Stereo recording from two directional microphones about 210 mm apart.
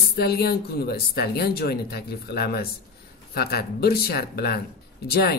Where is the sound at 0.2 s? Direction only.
50° left (ahead or behind).